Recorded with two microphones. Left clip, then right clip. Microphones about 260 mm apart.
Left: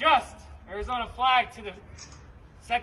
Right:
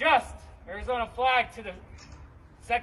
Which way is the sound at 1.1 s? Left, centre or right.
Centre.